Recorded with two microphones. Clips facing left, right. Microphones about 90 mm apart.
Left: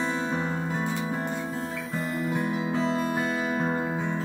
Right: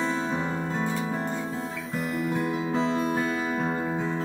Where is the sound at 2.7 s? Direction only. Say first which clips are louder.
Right 2 dB; centre (ahead or behind).